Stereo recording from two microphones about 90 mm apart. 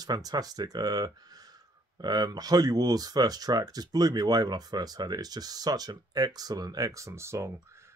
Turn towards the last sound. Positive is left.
turn(degrees=-30)  # may be behind; listen again after turning